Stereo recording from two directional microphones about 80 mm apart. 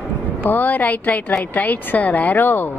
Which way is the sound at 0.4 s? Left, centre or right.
Left.